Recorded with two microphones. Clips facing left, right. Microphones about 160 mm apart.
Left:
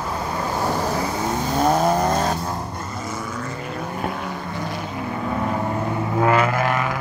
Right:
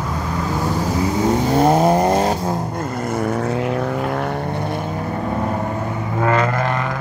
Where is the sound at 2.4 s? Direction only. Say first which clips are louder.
Right 6 dB; 55° right (ahead or behind).